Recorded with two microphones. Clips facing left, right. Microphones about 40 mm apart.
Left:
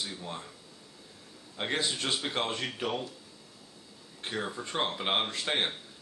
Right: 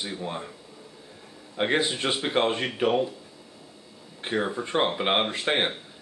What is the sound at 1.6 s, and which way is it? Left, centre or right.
Speech, right.